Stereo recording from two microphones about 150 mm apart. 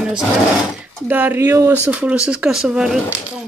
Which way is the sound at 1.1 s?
15° right (ahead or behind).